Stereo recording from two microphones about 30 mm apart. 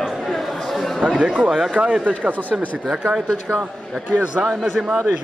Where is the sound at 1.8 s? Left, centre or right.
Right.